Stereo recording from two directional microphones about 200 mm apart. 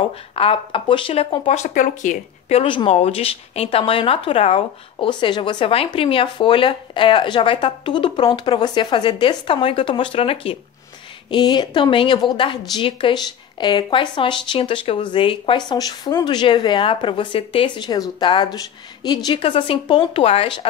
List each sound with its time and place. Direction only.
0.4 s a woman's voice: 25° left (ahead or behind)